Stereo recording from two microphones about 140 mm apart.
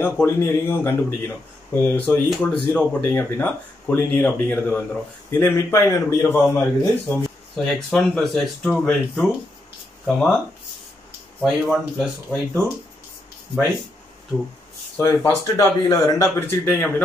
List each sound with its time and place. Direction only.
0.0 s speech: 15° left (ahead or behind)
7.5 s speech: 5° left (ahead or behind)
11.4 s speech: centre (ahead or behind)
15.0 s speech: 25° left (ahead or behind)